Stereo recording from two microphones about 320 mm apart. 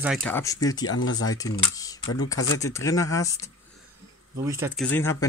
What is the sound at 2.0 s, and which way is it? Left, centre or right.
Speech, left.